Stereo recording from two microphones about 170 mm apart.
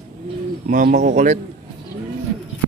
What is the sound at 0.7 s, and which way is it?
Speech, 55° right (ahead or behind).